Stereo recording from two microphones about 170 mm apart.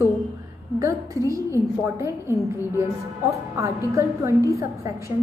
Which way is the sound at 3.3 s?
20° right (ahead or behind).